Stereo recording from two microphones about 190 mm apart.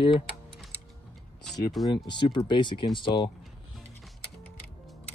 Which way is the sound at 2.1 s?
25° left (ahead or behind).